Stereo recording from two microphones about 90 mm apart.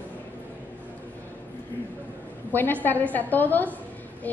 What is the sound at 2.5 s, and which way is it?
A woman's voice, 20° left (ahead or behind).